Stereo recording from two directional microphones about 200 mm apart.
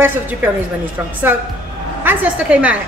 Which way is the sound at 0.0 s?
10° right (ahead or behind).